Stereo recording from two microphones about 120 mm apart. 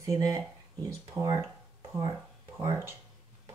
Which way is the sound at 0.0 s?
30° right (ahead or behind).